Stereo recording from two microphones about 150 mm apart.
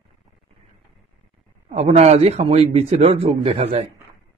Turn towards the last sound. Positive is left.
turn(degrees=-45)  # may be behind; listen again after turning